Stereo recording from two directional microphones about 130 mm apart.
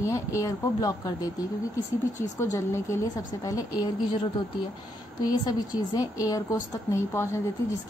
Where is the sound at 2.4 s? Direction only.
25° left (ahead or behind).